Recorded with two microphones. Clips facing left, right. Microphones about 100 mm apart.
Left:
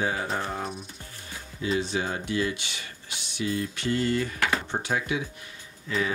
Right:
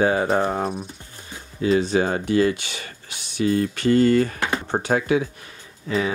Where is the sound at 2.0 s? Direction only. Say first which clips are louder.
Right 9 dB; 60° right (ahead or behind).